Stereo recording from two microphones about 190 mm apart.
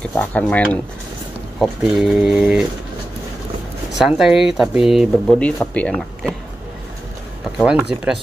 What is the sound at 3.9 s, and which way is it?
Speech, centre (ahead or behind).